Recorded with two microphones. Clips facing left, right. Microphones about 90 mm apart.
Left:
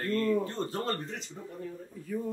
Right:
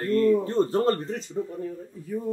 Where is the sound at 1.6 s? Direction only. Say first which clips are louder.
Right 6 dB; 15° right (ahead or behind).